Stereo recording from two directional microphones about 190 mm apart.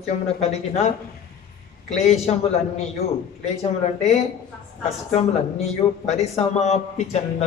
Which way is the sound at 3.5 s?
35° left (ahead or behind).